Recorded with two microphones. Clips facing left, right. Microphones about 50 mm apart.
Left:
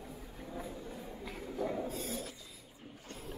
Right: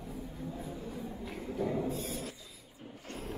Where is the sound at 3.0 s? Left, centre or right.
Right.